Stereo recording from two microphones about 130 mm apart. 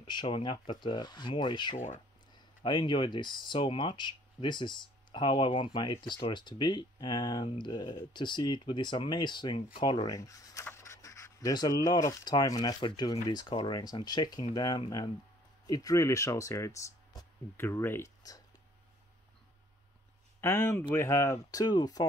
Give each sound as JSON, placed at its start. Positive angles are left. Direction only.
{"t": 0.0, "sound": "speech", "side_deg": 40}
{"t": 17.6, "sound": "speech", "side_deg": 15}
{"t": 20.3, "sound": "speech", "side_deg": 20}